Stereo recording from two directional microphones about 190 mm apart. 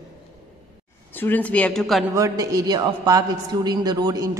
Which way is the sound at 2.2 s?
15° right (ahead or behind).